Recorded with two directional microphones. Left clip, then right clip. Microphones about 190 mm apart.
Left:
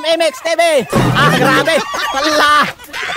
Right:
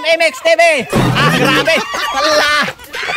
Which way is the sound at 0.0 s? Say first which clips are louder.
Right 2 dB; 40° left (ahead or behind).